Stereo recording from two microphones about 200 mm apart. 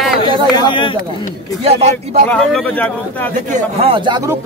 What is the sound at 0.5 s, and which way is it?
Speech, 25° left (ahead or behind).